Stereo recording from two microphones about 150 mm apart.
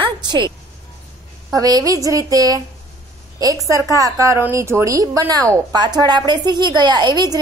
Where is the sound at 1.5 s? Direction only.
25° right (ahead or behind).